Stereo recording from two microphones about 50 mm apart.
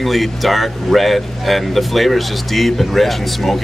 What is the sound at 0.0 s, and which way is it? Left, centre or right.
Speech, centre.